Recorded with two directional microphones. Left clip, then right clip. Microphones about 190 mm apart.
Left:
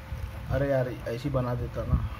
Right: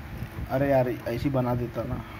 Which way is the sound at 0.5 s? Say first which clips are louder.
Right 4 dB; 5° right (ahead or behind).